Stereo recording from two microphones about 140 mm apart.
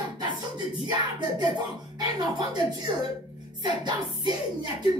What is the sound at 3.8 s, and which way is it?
Music, 30° right (ahead or behind).